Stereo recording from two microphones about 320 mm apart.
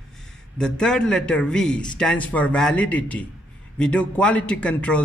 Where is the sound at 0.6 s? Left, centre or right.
Centre.